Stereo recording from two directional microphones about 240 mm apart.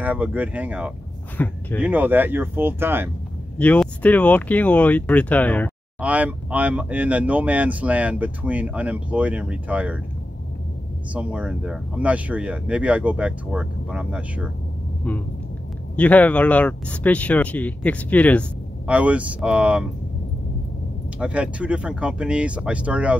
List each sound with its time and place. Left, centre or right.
0.0 s speech: centre
1.4 s speech: centre
1.8 s speech: centre
3.5 s speech: centre
5.9 s speech: centre
11.1 s speech: centre
15.0 s speech: centre
18.9 s speech: centre
21.2 s speech: centre